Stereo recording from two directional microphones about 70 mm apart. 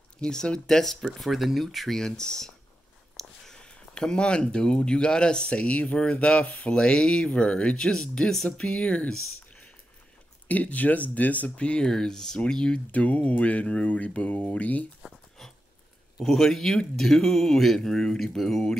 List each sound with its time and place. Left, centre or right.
0.2 s speech: centre
10.5 s speech: left
15.0 s a sound: centre
16.2 s speech: centre